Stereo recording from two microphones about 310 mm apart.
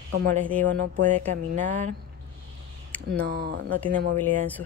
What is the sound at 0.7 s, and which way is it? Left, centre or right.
Speech, right.